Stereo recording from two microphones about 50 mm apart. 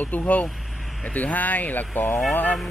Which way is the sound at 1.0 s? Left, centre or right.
Left.